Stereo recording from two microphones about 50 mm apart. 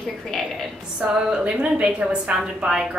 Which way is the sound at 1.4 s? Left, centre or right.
Right.